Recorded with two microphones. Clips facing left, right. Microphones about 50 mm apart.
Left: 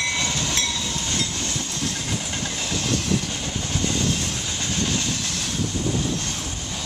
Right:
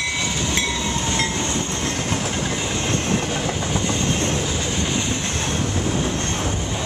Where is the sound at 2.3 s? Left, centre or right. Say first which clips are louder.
Right 4 dB; centre.